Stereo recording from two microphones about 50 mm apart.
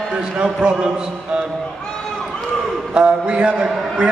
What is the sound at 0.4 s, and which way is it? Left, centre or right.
Speech, centre.